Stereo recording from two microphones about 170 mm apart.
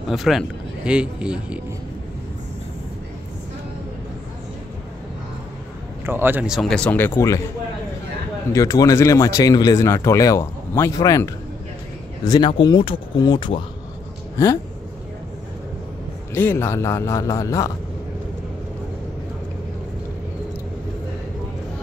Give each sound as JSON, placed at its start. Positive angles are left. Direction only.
{"t": 0.1, "sound": "a man's voice", "side_deg": 0}
{"t": 6.0, "sound": "a man's voice", "side_deg": -15}
{"t": 8.5, "sound": "speech", "side_deg": 20}
{"t": 12.3, "sound": "speech", "side_deg": 30}
{"t": 16.3, "sound": "a man's voice", "side_deg": 15}